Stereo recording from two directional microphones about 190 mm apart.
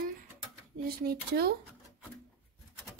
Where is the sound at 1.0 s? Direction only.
55° right (ahead or behind).